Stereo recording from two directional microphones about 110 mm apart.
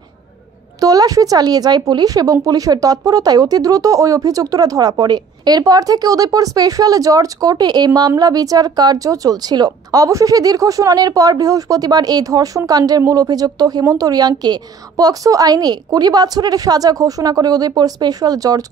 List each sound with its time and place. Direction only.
0.7 s a woman's voice: 35° right (ahead or behind)